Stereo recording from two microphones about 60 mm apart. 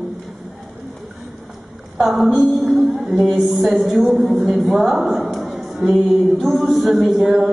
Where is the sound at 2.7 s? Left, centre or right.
Centre.